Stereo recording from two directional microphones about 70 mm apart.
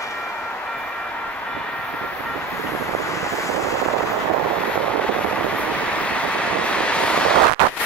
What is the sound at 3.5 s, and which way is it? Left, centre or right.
Vehicle, left.